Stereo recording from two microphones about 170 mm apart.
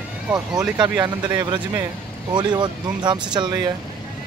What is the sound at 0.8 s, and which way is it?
Speech, 25° right (ahead or behind).